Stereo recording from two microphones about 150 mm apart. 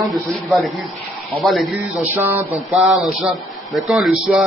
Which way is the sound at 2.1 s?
15° right (ahead or behind).